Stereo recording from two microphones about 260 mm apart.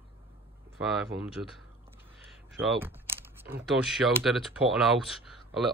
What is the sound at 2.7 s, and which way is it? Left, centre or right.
Speech, centre.